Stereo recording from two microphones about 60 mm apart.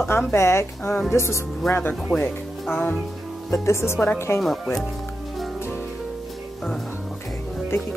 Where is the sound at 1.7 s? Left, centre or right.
Left.